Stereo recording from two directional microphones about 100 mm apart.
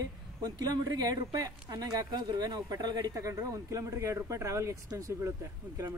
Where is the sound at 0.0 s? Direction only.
40° right (ahead or behind).